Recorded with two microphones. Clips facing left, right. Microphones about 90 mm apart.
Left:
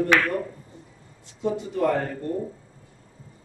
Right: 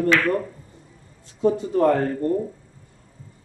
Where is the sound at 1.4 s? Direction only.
40° right (ahead or behind).